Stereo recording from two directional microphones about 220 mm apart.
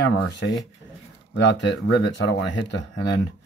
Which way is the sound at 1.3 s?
55° left (ahead or behind).